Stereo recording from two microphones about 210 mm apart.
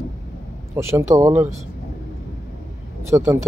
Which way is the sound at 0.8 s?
15° right (ahead or behind).